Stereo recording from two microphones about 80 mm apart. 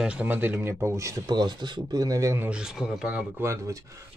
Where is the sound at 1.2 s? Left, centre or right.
Right.